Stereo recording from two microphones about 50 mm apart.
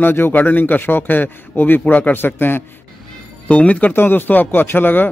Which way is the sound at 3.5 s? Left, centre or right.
Left.